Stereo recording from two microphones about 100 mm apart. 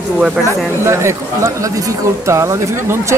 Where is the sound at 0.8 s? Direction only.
30° right (ahead or behind).